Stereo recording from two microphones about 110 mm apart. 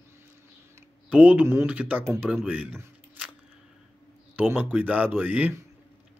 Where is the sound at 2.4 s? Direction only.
15° right (ahead or behind).